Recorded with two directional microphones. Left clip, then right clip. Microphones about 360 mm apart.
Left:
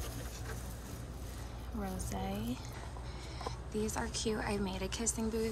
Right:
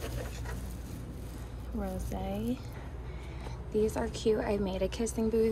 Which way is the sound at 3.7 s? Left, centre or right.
Centre.